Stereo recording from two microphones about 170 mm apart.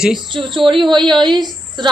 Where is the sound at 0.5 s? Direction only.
30° right (ahead or behind).